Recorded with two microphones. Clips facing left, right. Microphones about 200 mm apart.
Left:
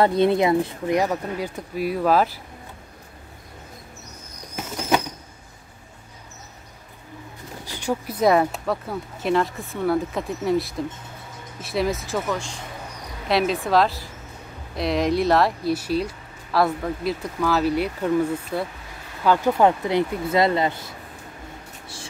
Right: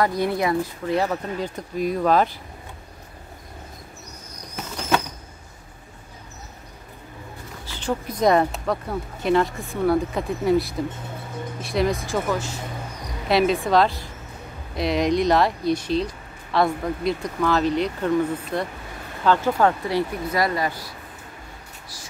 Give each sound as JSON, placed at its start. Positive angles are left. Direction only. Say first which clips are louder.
{"t": 0.0, "sound": "speech", "louder": "left 4 dB", "side_deg": 25}
{"t": 4.6, "sound": "bird flight", "louder": "left 1 dB", "side_deg": 15}
{"t": 7.6, "sound": "speech", "louder": "even", "side_deg": 15}